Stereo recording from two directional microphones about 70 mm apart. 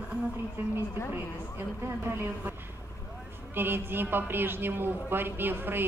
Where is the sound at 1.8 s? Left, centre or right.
Right.